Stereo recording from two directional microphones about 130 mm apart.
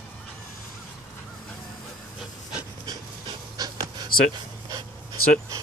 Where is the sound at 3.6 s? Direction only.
30° right (ahead or behind).